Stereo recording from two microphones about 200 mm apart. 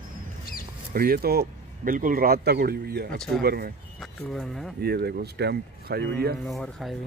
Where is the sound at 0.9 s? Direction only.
50° right (ahead or behind).